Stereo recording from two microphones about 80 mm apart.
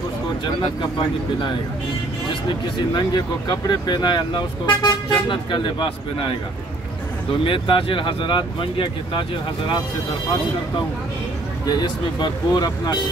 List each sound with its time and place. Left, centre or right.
2.9 s speech: left
7.4 s speech: left
11.6 s speech: left